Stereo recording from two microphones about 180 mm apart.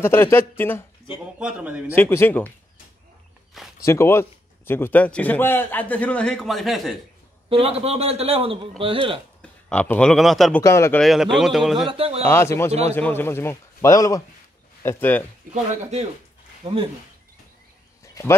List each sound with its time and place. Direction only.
0.0 s a man's voice: 10° left (ahead or behind)
1.4 s a man's voice: 5° right (ahead or behind)
2.0 s a man's voice: 10° left (ahead or behind)
3.8 s a man's voice: 15° left (ahead or behind); by 7.0 s centre (ahead or behind)
7.4 s a man's voice: 30° right (ahead or behind)
9.4 s a man's voice: 5° left (ahead or behind)
10.6 s a man's voice: 15° left (ahead or behind)
11.0 s a man's voice: centre (ahead or behind)
11.9 s a man's voice: 30° right (ahead or behind)
12.3 s a man's voice: 15° left (ahead or behind)
15.5 s a man's voice: 40° right (ahead or behind)